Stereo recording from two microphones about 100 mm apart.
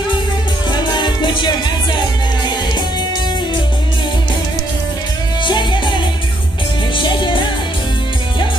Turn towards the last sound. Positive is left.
turn(degrees=50)  # may be behind; listen again after turning